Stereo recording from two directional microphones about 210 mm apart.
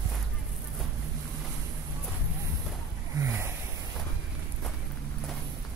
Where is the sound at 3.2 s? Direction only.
10° right (ahead or behind).